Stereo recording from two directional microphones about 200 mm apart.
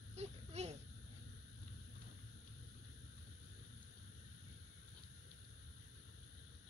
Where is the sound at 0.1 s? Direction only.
35° right (ahead or behind).